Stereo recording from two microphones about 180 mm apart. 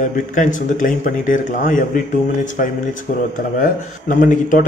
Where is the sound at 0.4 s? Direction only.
45° left (ahead or behind).